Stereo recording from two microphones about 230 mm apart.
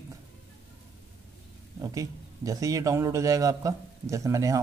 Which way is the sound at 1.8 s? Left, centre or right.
Centre.